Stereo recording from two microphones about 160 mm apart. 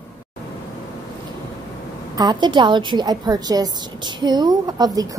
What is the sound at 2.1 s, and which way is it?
A woman's voice, 25° right (ahead or behind).